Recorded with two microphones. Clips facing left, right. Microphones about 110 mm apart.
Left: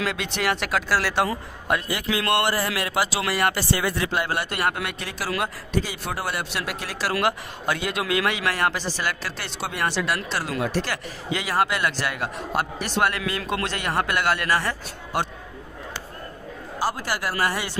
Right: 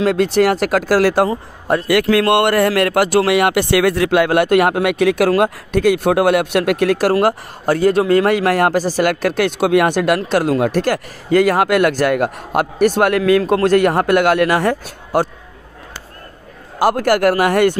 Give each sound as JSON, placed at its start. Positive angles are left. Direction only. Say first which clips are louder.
{"t": 0.0, "sound": "speech", "louder": "right 12 dB", "side_deg": -45}
{"t": 1.3, "sound": "a man's voice", "louder": "right 7 dB", "side_deg": -35}
{"t": 1.9, "sound": "speech", "louder": "right 11 dB", "side_deg": -70}
{"t": 13.4, "sound": "speech", "louder": "right 15 dB", "side_deg": -45}
{"t": 16.8, "sound": "speech", "louder": "right 13 dB", "side_deg": -60}